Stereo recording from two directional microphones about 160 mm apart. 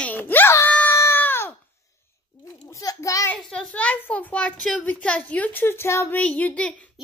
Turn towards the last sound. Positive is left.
turn(degrees=10)  # may be behind; listen again after turning